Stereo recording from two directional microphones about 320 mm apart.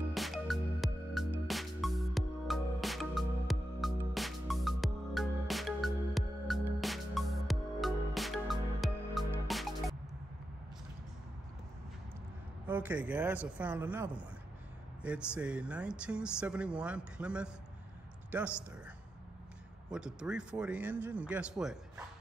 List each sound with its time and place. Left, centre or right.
0.1 s music: centre
12.6 s speech: centre
19.9 s speech: centre